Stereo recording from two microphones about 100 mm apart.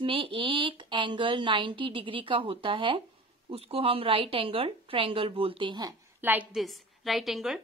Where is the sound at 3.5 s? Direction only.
75° right (ahead or behind); by 5.8 s 55° right (ahead or behind).